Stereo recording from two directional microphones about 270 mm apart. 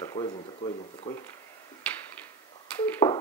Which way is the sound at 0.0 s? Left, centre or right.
Centre.